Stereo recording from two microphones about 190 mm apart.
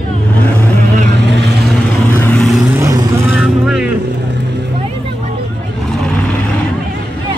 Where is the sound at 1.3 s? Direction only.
60° right (ahead or behind).